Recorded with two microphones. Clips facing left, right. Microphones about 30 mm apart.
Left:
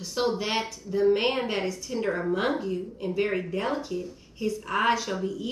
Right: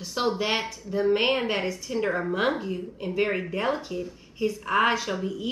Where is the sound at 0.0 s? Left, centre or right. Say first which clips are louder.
Right 1 dB; centre.